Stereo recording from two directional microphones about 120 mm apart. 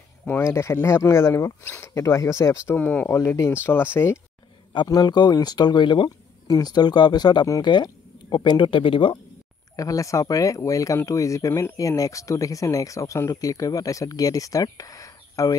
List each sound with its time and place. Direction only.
0.3 s speech: 20° left (ahead or behind)
2.7 s speech: 15° left (ahead or behind)
4.7 s speech: 35° left (ahead or behind)
9.8 s speech: 30° left (ahead or behind)